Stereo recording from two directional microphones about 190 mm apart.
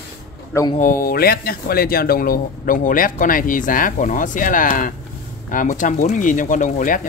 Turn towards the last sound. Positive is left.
turn(degrees=45)  # may be behind; listen again after turning